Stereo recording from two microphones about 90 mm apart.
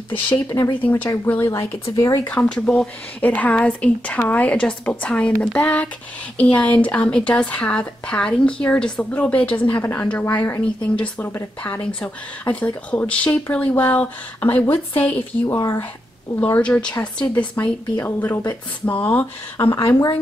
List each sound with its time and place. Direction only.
0.8 s speech: 20° left (ahead or behind)
2.0 s speech: 40° left (ahead or behind)
2.2 s a woman's voice: 15° left (ahead or behind)
10.8 s a woman's voice: 15° left (ahead or behind)
11.2 s speech: 25° left (ahead or behind)
11.8 s a woman's voice: 15° left (ahead or behind)
16.3 s a woman's voice: 15° left (ahead or behind)
17.9 s speech: 25° left (ahead or behind)